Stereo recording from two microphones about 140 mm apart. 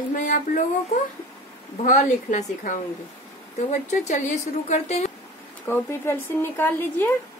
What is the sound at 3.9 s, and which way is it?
A woman's voice, 55° left (ahead or behind).